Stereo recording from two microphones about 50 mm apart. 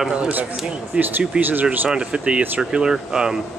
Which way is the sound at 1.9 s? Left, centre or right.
Centre.